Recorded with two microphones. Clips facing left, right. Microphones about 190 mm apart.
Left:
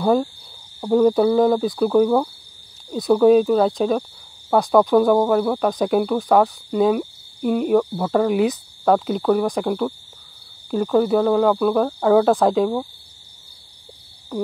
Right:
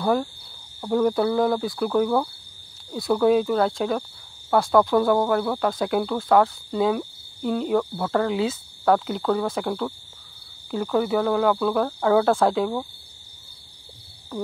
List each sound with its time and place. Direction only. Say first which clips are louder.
0.0 s cricket: left 4 dB; 15° left (ahead or behind)
0.7 s speech: left 5 dB; 15° left (ahead or behind)